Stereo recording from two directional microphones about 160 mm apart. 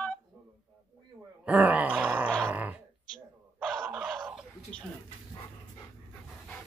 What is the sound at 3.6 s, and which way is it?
Dog, centre (ahead or behind).